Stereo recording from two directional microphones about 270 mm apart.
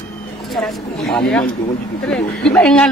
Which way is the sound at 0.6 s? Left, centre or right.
Centre.